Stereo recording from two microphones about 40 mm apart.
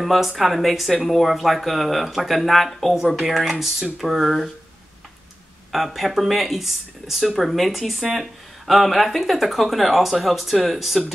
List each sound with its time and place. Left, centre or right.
0.0 s speech: centre
5.7 s speech: centre